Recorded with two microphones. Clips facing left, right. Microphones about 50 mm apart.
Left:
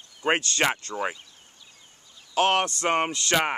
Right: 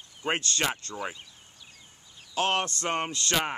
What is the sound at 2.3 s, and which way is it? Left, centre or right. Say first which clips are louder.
Speech: left 5 dB; left.